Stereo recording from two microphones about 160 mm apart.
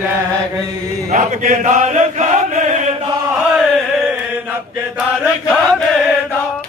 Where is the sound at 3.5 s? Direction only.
5° right (ahead or behind).